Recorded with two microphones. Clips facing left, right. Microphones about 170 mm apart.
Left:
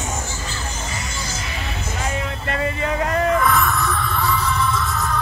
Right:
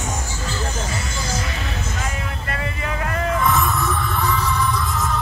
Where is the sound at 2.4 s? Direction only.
25° left (ahead or behind).